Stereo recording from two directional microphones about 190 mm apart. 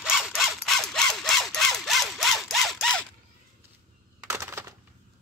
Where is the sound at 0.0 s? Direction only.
5° right (ahead or behind).